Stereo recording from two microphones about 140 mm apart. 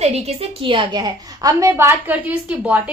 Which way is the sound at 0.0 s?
50° right (ahead or behind).